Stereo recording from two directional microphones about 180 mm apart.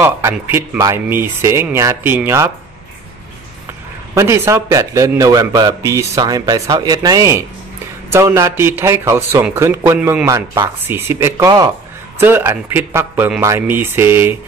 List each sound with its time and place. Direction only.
0.0 s a man's voice: 10° right (ahead or behind)
4.1 s a man's voice: 15° right (ahead or behind)